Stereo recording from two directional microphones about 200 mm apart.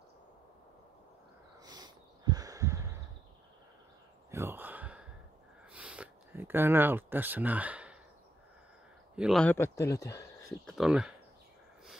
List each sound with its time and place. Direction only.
1.6 s snort: 20° right (ahead or behind)
4.3 s a sound: 10° right (ahead or behind)
9.1 s speech: centre (ahead or behind); by 10.2 s 15° left (ahead or behind)
10.7 s speech: 5° right (ahead or behind)